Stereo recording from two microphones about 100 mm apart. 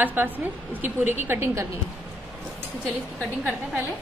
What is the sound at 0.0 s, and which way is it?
A woman's voice, 20° right (ahead or behind).